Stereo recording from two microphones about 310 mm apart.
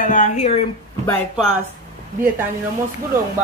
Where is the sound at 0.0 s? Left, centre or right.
Left.